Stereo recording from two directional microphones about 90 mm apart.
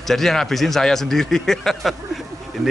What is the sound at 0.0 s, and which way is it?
Speech, 5° left (ahead or behind).